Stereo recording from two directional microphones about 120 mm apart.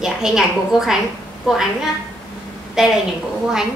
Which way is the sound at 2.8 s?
5° right (ahead or behind).